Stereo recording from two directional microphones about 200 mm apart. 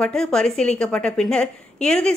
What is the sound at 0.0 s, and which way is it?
A woman's voice, 5° left (ahead or behind).